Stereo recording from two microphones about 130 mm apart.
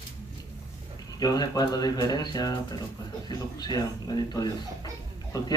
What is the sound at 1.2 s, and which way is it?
Speech, 30° left (ahead or behind).